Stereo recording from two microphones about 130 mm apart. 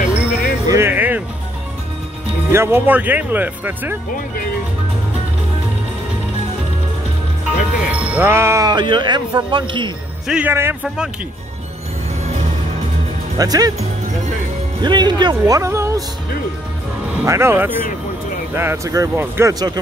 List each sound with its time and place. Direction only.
0.1 s jingle bell: 10° right (ahead or behind)
0.7 s music: 20° right (ahead or behind)
2.5 s speech: 15° right (ahead or behind)
7.8 s speech: 10° right (ahead or behind)
8.6 s speech: 35° right (ahead or behind)
10.2 s speech: 5° right (ahead or behind)
13.4 s speech: 30° right (ahead or behind)
14.8 s speech: 35° right (ahead or behind)
17.3 s speech: 20° right (ahead or behind)